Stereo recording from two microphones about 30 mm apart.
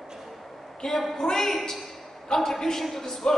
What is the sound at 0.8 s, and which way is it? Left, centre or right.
A woman's voice, centre.